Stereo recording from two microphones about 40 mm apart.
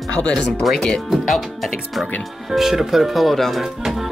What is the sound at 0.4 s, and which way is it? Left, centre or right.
Speech, left.